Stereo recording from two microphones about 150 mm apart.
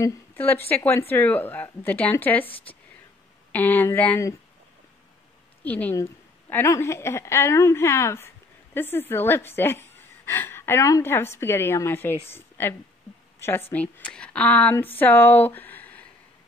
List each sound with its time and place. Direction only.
0.0 s a woman's voice: 15° left (ahead or behind)
3.5 s a woman's voice: 10° left (ahead or behind)
5.6 s a woman's voice: 10° left (ahead or behind)